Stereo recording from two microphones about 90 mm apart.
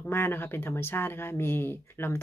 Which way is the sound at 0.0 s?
25° left (ahead or behind).